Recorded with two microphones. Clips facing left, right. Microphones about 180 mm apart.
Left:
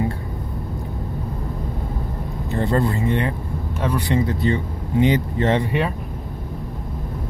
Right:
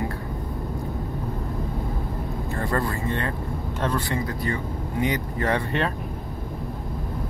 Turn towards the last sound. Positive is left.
turn(degrees=25)  # may be behind; listen again after turning